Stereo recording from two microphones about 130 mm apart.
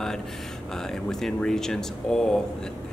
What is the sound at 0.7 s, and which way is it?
Speech, 5° left (ahead or behind).